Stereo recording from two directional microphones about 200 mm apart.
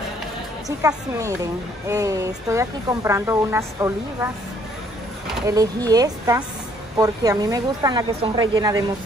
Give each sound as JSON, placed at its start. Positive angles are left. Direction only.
{"t": 0.7, "sound": "a woman's voice", "side_deg": -15}
{"t": 5.5, "sound": "a woman's voice", "side_deg": -15}